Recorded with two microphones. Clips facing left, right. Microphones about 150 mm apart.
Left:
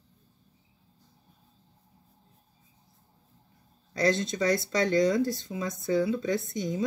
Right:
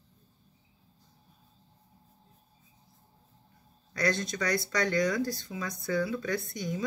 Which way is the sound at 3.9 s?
25° left (ahead or behind).